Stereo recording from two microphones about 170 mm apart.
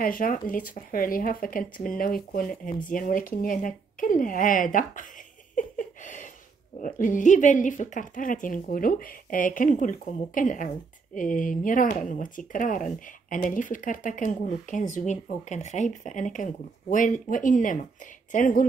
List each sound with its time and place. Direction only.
0.0 s speech: 55° left (ahead or behind)
5.6 s a sound: 50° left (ahead or behind)
6.8 s speech: 50° left (ahead or behind)